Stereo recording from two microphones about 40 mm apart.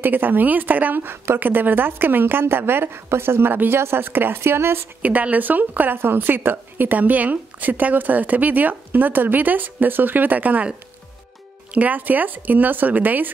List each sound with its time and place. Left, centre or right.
0.0 s speech: right
1.0 s a woman's voice: right
1.4 s a woman's voice: right
5.0 s speech: right
5.9 s a woman's voice: right
7.0 s speech: right
11.7 s speech: right